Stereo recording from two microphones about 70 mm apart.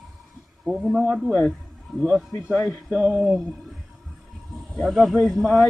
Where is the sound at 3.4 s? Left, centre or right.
Centre.